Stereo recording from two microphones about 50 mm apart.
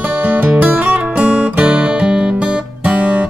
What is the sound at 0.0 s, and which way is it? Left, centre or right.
Music, right.